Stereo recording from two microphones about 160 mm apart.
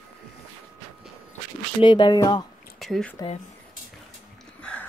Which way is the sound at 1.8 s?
30° left (ahead or behind).